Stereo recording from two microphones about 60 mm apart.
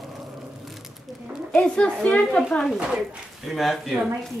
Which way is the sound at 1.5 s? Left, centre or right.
Centre.